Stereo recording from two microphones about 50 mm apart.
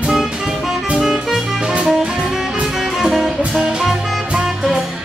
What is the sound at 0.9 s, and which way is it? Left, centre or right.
Music, centre.